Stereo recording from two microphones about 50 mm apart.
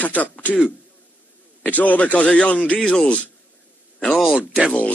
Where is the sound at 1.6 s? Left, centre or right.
Left.